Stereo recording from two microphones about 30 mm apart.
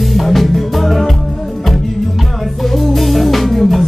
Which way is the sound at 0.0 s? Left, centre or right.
Centre.